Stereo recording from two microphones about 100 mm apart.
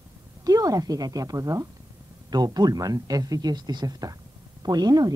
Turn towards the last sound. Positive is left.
turn(degrees=-40)  # may be behind; listen again after turning